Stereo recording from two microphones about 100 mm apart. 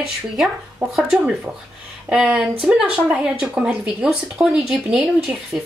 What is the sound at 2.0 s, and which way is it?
Speech, 10° right (ahead or behind).